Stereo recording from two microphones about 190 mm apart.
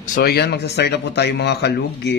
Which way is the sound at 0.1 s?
55° left (ahead or behind).